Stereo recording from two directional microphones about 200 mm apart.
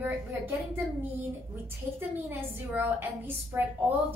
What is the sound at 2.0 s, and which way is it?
A woman's voice, 10° right (ahead or behind).